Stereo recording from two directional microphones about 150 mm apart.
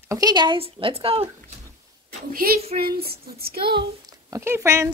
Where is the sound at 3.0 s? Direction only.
90° right.